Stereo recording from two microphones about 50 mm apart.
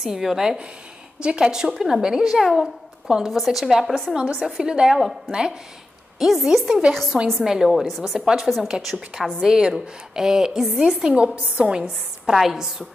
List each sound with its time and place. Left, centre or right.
0.0 s a woman's voice: centre
3.1 s a woman's voice: centre
3.3 s a woman's voice: centre
4.4 s a woman's voice: centre
6.1 s a woman's voice: centre
6.9 s a woman's voice: centre
11.3 s a woman's voice: right
12.3 s a woman's voice: centre